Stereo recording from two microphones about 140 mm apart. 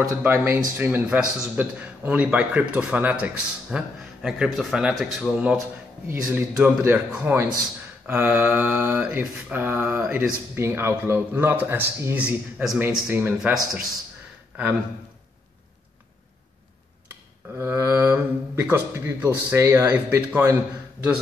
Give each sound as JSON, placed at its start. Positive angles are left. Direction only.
{"t": 0.0, "sound": "mantra", "side_deg": -20}
{"t": 3.7, "sound": "speech", "side_deg": -5}
{"t": 6.0, "sound": "mantra", "side_deg": -20}
{"t": 17.6, "sound": "mantra", "side_deg": -15}